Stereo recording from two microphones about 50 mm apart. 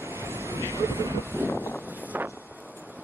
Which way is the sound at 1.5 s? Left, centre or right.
Left.